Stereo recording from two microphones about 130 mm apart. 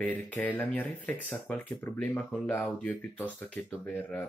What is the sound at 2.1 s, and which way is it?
Speech, 5° left (ahead or behind).